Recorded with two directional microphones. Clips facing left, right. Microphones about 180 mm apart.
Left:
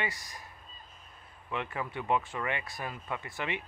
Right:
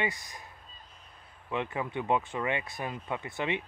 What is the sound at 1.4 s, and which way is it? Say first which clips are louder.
Speech: right 3 dB; 20° right (ahead or behind).